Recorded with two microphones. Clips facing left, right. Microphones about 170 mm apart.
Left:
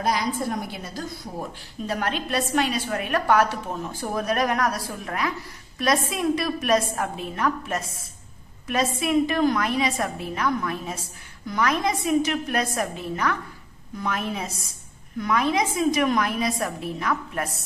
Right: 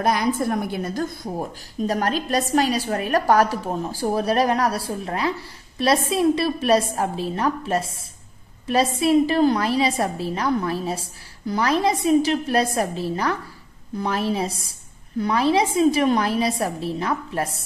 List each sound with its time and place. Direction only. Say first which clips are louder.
0.0 s a woman's voice: right 4 dB; 55° right (ahead or behind)
1.9 s a woman's voice: right 4 dB; 40° right (ahead or behind)